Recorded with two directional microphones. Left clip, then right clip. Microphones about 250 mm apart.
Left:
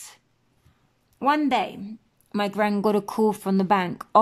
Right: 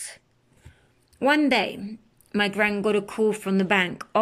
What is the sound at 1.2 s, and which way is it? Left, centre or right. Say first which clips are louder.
Speech: right 1 dB; centre.